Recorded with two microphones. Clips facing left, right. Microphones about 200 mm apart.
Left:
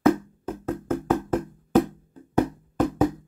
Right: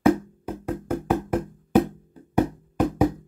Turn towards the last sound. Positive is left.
turn(degrees=-10)  # may be behind; listen again after turning